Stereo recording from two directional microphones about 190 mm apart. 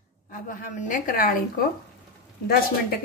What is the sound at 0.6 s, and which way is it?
Speech, 45° left (ahead or behind).